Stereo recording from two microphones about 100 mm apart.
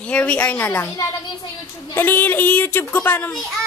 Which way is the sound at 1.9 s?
20° left (ahead or behind).